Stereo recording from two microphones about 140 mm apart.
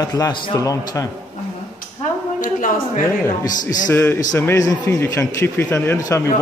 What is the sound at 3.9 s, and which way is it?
A man's voice, 15° left (ahead or behind).